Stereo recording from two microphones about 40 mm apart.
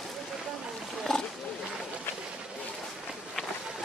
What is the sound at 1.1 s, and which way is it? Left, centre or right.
Wild animals, centre.